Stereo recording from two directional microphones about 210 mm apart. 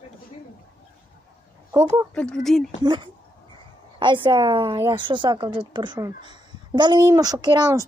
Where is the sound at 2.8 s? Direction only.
20° right (ahead or behind).